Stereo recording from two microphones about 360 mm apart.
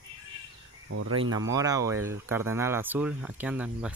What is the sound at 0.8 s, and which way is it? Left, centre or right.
Speech, right.